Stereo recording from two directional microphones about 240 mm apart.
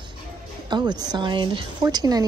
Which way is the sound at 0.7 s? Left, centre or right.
Centre.